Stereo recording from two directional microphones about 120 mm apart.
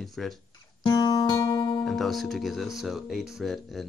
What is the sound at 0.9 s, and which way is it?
Music, 40° left (ahead or behind).